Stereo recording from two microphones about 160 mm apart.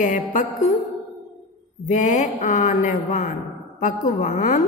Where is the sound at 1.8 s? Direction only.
50° left (ahead or behind).